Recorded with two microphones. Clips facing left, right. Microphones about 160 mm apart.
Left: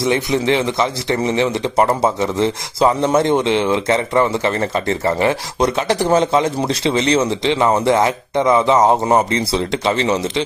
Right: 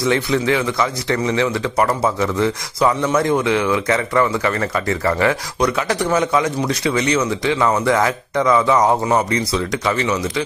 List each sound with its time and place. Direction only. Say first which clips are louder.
0.0 s a man's voice: left 1 dB; 20° left (ahead or behind)